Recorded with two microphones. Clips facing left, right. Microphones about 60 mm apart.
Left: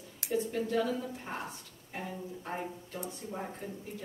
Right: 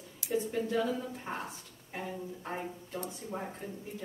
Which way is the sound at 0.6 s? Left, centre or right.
Centre.